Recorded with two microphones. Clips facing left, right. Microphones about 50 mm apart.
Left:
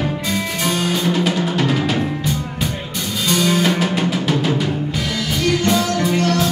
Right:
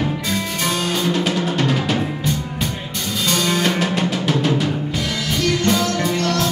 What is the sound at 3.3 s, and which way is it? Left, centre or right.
Music, centre.